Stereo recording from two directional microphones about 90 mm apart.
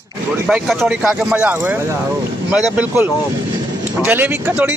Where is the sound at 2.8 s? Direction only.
20° right (ahead or behind).